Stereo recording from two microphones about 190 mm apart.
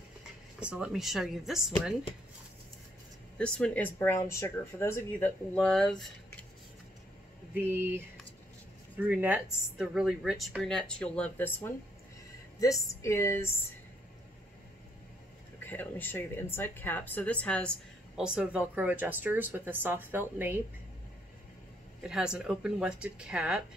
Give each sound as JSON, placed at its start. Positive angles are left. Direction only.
{"t": 0.6, "sound": "speech", "side_deg": -5}
{"t": 3.3, "sound": "speech", "side_deg": 5}
{"t": 7.5, "sound": "a woman's voice", "side_deg": -10}
{"t": 9.0, "sound": "speech", "side_deg": -10}
{"t": 15.6, "sound": "a woman's voice", "side_deg": 10}
{"t": 22.0, "sound": "speech", "side_deg": -5}